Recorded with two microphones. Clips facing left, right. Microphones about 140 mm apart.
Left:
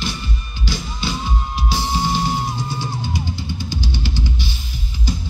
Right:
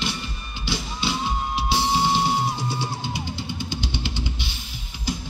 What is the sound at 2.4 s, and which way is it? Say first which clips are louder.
Music: left 1 dB; centre (ahead or behind).